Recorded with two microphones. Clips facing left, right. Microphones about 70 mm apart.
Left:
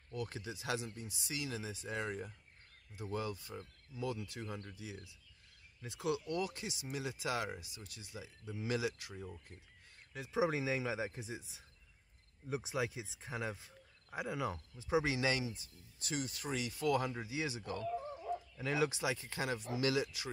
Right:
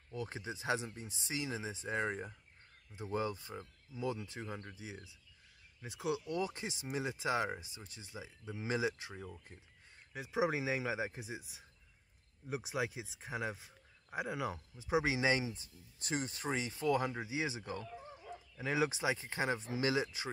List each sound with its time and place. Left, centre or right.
0.1 s speech: right
10.1 s speech: centre
16.0 s speech: right